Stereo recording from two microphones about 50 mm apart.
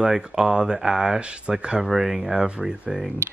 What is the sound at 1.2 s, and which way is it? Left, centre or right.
Speech, right.